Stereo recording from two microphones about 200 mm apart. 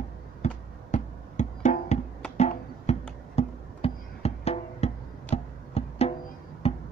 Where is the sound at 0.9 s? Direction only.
35° left (ahead or behind).